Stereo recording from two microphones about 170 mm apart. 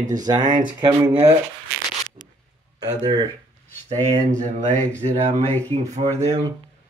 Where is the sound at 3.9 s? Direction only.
45° right (ahead or behind).